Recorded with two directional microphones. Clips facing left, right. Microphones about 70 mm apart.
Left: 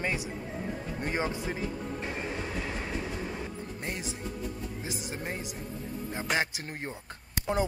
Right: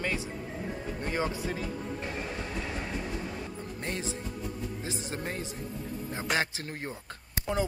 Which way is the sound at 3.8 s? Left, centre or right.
Centre.